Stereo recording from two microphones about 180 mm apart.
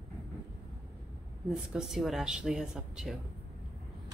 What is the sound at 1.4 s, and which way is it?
Speech, 5° right (ahead or behind).